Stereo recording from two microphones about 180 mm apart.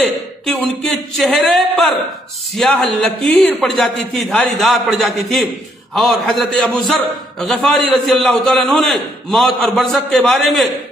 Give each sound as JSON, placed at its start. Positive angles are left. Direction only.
{"t": 0.0, "sound": "a man's voice", "side_deg": 0}